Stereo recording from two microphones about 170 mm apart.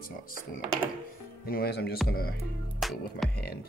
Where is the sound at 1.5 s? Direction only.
70° left (ahead or behind).